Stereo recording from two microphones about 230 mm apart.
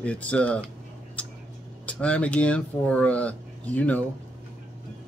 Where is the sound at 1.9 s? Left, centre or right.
Centre.